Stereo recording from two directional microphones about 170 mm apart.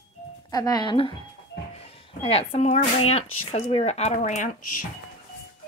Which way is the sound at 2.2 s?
35° left (ahead or behind).